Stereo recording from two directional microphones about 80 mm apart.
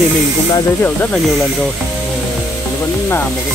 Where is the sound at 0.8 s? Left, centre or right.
Left.